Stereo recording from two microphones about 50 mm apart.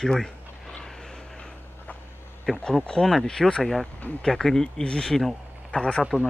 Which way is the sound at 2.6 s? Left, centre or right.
Centre.